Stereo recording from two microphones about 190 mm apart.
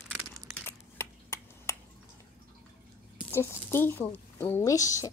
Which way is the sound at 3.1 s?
10° left (ahead or behind).